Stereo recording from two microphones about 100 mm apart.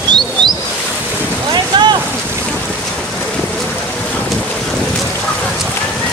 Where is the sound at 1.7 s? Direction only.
50° right (ahead or behind).